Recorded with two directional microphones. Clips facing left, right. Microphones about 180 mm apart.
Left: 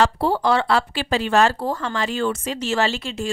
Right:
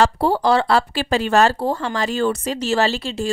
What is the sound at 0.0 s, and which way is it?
A woman's voice, 40° right (ahead or behind).